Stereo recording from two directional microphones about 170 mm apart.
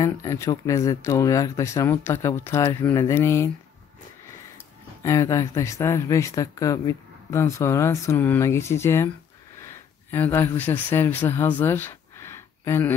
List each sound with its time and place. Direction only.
0.0 s speech: 20° left (ahead or behind)
5.0 s speech: 20° left (ahead or behind)
10.1 s speech: 15° left (ahead or behind)